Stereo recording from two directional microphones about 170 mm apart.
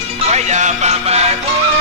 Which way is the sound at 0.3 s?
40° right (ahead or behind).